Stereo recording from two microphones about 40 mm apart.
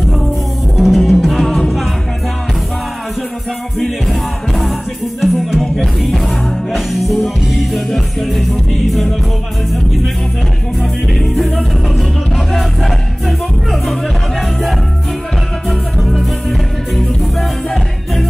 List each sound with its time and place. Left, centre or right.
0.7 s music: centre
3.7 s music: centre
6.0 s music: centre
11.3 s music: centre